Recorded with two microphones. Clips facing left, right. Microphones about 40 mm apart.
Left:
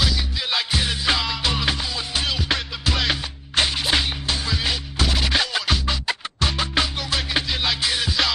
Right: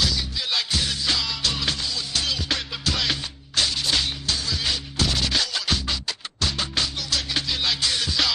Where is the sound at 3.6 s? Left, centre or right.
Left.